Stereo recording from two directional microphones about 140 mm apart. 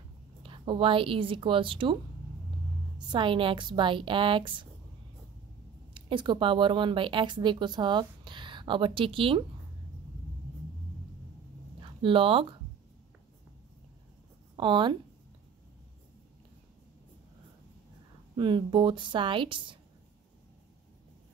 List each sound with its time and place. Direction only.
0.4 s a woman's voice: 40° right (ahead or behind)
3.1 s speech: 35° right (ahead or behind)
5.9 s speech: 35° right (ahead or behind)
11.8 s speech: 40° right (ahead or behind)
14.6 s speech: 35° right (ahead or behind)
18.3 s speech: 35° right (ahead or behind)